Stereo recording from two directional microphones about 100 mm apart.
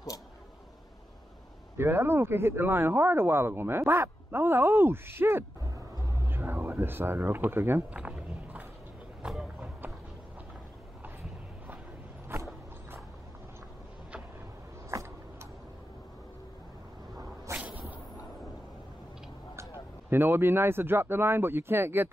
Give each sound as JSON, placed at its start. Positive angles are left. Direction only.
{"t": 1.8, "sound": "speech", "side_deg": -25}
{"t": 8.0, "sound": "a sound", "side_deg": -10}
{"t": 9.6, "sound": "run", "side_deg": -15}
{"t": 17.5, "sound": "cat", "side_deg": -30}
{"t": 20.1, "sound": "speech", "side_deg": -20}